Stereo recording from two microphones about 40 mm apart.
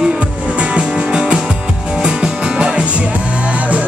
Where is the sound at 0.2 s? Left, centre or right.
Right.